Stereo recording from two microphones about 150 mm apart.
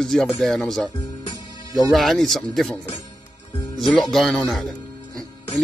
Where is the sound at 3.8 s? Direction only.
Centre (ahead or behind).